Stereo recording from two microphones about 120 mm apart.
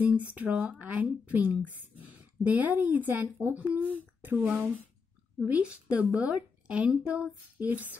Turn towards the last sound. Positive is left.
turn(degrees=-15)  # may be behind; listen again after turning